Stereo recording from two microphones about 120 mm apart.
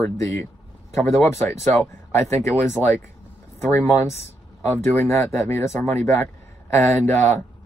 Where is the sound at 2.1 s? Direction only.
25° left (ahead or behind).